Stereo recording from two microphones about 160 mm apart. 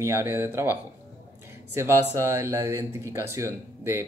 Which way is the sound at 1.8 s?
15° right (ahead or behind).